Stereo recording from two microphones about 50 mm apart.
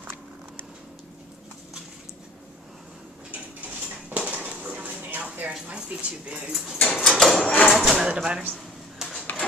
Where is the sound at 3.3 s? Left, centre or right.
Right.